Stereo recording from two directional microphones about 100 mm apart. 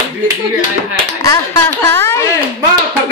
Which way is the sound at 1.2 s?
30° left (ahead or behind).